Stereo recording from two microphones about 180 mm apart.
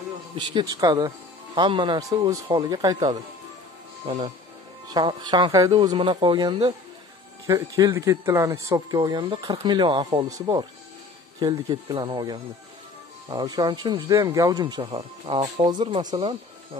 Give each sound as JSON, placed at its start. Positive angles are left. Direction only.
{"t": 0.4, "sound": "speech", "side_deg": -25}